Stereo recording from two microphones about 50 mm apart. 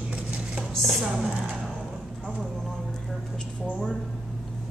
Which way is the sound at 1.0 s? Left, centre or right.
Centre.